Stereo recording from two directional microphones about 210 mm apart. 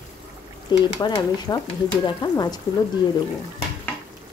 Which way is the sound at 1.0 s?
20° left (ahead or behind).